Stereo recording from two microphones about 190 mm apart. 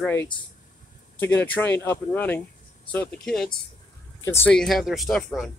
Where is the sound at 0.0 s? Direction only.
10° left (ahead or behind).